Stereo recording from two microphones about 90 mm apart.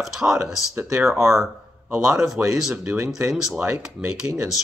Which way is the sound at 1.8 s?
5° right (ahead or behind).